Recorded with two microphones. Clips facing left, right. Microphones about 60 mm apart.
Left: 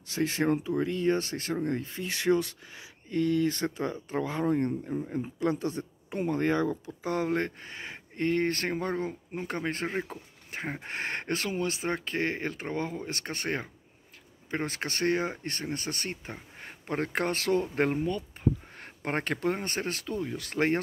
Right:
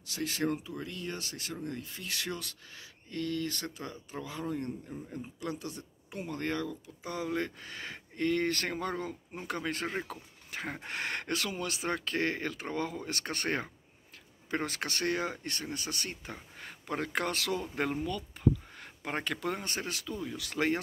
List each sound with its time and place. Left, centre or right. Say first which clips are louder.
0.0 s speech: left 5 dB; left
4.1 s speech: left 8 dB; left
7.1 s speech: left 5 dB; left
7.6 s speech: left 1 dB; left
18.8 s a sound: left 4 dB; left
19.3 s speech: left 5 dB; left